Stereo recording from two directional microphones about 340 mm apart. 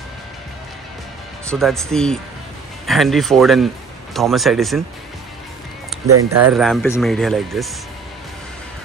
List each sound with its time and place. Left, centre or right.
1.5 s speech: centre
6.0 s speech: right
6.5 s speech: centre